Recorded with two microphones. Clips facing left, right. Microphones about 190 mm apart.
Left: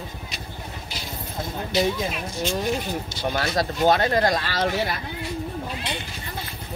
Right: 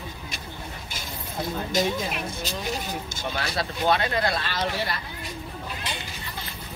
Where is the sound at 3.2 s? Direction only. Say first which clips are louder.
Left 6 dB; 45° left (ahead or behind).